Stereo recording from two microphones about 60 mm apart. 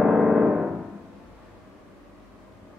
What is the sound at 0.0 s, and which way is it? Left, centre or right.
Music, centre.